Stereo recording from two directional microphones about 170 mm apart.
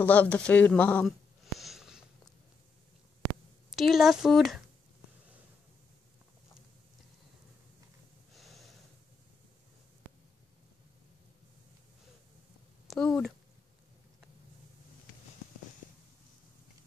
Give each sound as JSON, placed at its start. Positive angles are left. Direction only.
{"t": 0.0, "sound": "a sound", "side_deg": 10}
{"t": 3.7, "sound": "speech", "side_deg": 0}
{"t": 8.4, "sound": "snort", "side_deg": 0}
{"t": 12.8, "sound": "speech", "side_deg": 5}